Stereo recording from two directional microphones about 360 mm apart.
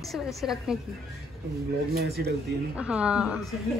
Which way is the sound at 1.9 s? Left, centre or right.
Right.